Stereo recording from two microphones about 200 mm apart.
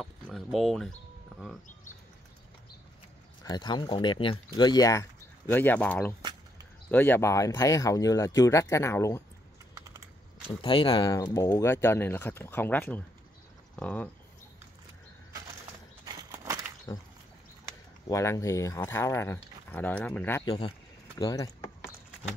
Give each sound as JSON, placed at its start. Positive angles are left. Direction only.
{"t": 0.0, "sound": "chicken", "side_deg": 0}
{"t": 3.4, "sound": "speech", "side_deg": 20}
{"t": 9.8, "sound": "computer keyboard", "side_deg": -15}
{"t": 10.6, "sound": "speech", "side_deg": 25}
{"t": 16.1, "sound": "a sound", "side_deg": -20}
{"t": 16.9, "sound": "speech", "side_deg": 15}
{"t": 21.2, "sound": "a sound", "side_deg": 20}